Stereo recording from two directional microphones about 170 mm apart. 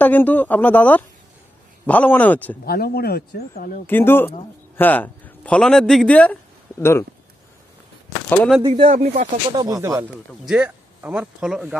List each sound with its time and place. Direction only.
0.0 s a man's voice: 10° left (ahead or behind)
2.6 s speech: 65° left (ahead or behind)
3.8 s a man's voice: 10° left (ahead or behind)
8.6 s speech: 35° right (ahead or behind)
8.9 s speech: 45° right (ahead or behind)
9.5 s speech: 20° right (ahead or behind)
10.4 s speech: 5° right (ahead or behind)